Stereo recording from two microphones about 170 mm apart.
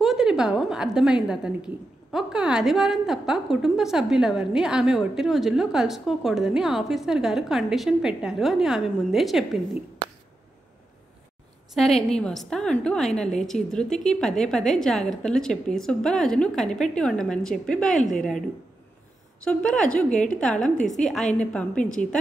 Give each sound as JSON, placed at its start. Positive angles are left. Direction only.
{"t": 0.0, "sound": "a woman's voice", "side_deg": 0}
{"t": 11.7, "sound": "a woman's voice", "side_deg": 0}
{"t": 19.4, "sound": "a woman's voice", "side_deg": 5}
{"t": 20.1, "sound": "a woman's voice", "side_deg": 45}
{"t": 20.3, "sound": "a woman's voice", "side_deg": 5}